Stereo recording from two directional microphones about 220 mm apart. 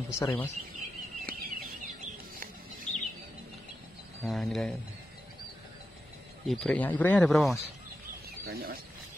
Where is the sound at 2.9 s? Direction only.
35° left (ahead or behind).